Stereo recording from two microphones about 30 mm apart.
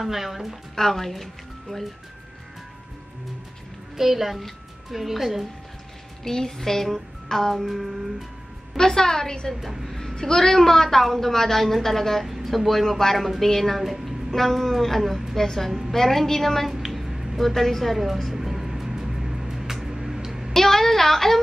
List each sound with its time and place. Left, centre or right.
0.0 s a woman's voice: centre
0.7 s a woman's voice: centre
3.9 s a woman's voice: centre
6.2 s a woman's voice: centre
7.5 s speech: centre
8.7 s a woman's voice: centre
9.8 s a woman's voice: centre
13.7 s speech: centre
14.3 s a woman's voice: centre
16.9 s a sound: centre
17.4 s speech: centre
17.9 s speech: centre
18.3 s music: centre
20.5 s a woman's voice: centre